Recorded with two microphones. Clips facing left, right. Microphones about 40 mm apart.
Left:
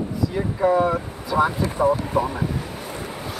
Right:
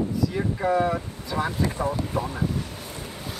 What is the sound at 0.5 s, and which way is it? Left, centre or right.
Speech, centre.